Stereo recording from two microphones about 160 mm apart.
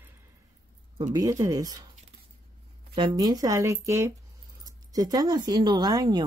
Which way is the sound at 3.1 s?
25° right (ahead or behind).